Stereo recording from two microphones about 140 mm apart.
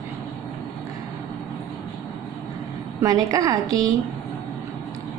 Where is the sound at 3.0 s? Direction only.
25° right (ahead or behind).